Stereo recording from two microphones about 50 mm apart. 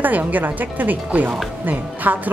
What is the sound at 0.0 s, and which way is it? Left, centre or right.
Speech, right.